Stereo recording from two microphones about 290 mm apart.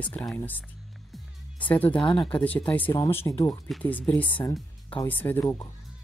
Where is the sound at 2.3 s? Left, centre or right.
Centre.